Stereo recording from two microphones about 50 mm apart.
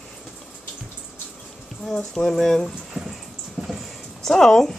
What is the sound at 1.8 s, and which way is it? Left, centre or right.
Speech, centre.